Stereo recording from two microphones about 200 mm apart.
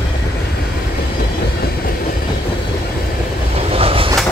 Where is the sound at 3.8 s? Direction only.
30° right (ahead or behind).